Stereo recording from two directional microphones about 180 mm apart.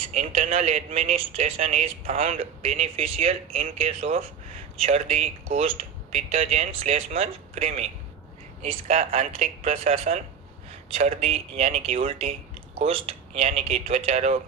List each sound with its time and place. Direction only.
0.1 s speech: 40° right (ahead or behind)